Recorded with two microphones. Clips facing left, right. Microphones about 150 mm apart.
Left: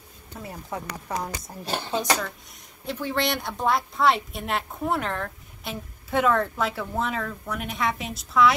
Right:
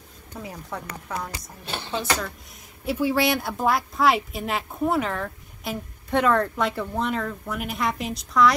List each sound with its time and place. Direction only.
0.5 s speech: 10° left (ahead or behind)
1.6 s speech: 40° left (ahead or behind)
2.8 s a woman's voice: 10° right (ahead or behind)